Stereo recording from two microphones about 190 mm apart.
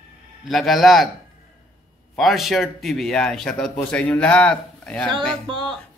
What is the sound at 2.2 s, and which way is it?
Speech, centre (ahead or behind).